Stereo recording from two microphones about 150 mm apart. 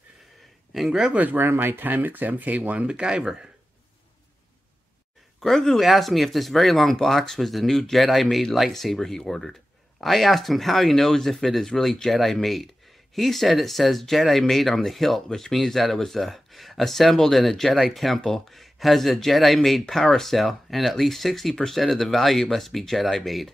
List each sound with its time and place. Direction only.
0.7 s speech: 5° right (ahead or behind)
5.4 s speech: centre (ahead or behind)